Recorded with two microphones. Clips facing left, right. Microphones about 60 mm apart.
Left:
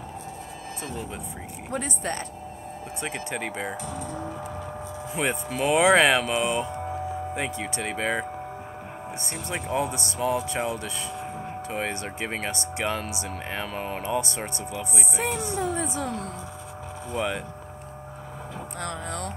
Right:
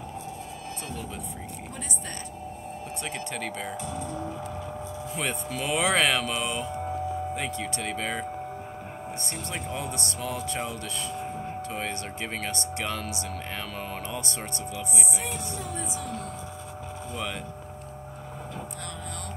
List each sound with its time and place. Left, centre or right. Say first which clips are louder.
1.7 s speech: left 12 dB; left
3.0 s speech: left 4 dB; centre
4.1 s vehicle: even; left
5.1 s speech: left 5 dB; centre
6.7 s music: even; centre
7.3 s speech: left 2 dB; centre
9.5 s speech: left 7 dB; centre
15.1 s speech: left 6 dB; left
17.1 s speech: left 7 dB; centre